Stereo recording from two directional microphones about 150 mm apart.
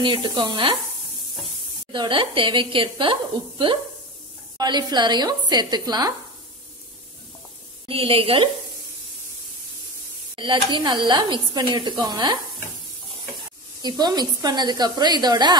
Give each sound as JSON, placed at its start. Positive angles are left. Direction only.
{"t": 0.0, "sound": "a woman's voice", "side_deg": -30}
{"t": 1.9, "sound": "a woman's voice", "side_deg": -35}
{"t": 7.9, "sound": "a woman's voice", "side_deg": -40}
{"t": 10.3, "sound": "speech", "side_deg": -30}
{"t": 13.8, "sound": "speech", "side_deg": -30}